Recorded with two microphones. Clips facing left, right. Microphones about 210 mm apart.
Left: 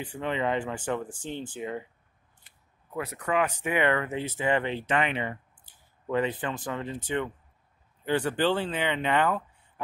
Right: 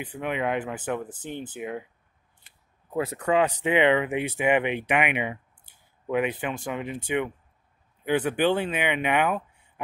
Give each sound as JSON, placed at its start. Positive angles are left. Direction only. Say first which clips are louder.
{"t": 0.1, "sound": "speech", "louder": "right 1 dB", "side_deg": -10}
{"t": 1.0, "sound": "speech", "louder": "even", "side_deg": -20}
{"t": 2.9, "sound": "speech", "louder": "right 5 dB", "side_deg": -30}